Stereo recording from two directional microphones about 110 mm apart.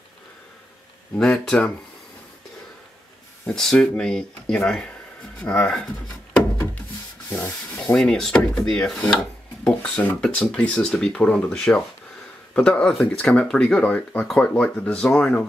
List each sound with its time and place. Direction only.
1.1 s speech: 5° left (ahead or behind)
3.5 s speech: 5° left (ahead or behind)
6.3 s a sound: 15° left (ahead or behind)
7.2 s sanding: 20° left (ahead or behind)
7.8 s speech: 5° left (ahead or behind)